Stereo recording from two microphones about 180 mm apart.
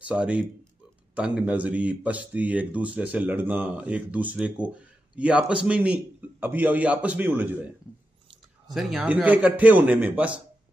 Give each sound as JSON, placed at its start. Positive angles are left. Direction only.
{"t": 0.0, "sound": "speech", "side_deg": -5}
{"t": 8.7, "sound": "speech", "side_deg": -5}